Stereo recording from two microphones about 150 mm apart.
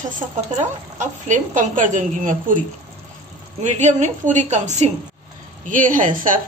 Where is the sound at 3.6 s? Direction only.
50° right (ahead or behind).